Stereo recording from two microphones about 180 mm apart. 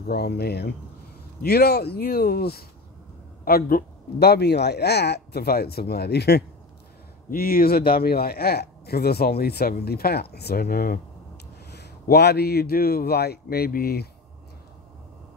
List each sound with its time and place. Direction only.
0.0 s speech: 60° left (ahead or behind)